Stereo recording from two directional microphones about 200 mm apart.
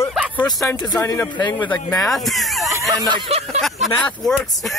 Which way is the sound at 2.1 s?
Centre (ahead or behind).